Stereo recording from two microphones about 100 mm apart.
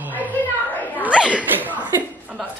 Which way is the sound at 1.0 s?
10° right (ahead or behind).